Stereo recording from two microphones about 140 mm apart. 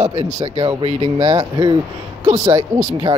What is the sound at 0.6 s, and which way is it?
Speech, 35° right (ahead or behind).